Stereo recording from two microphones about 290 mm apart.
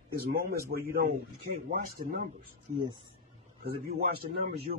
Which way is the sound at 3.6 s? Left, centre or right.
Right.